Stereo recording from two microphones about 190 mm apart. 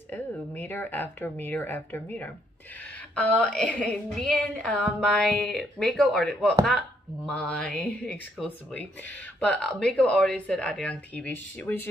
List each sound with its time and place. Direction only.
0.1 s speech: 10° left (ahead or behind)
9.5 s speech: 5° left (ahead or behind)